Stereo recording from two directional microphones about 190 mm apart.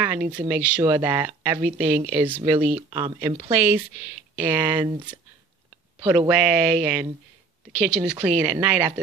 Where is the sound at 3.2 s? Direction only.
10° right (ahead or behind).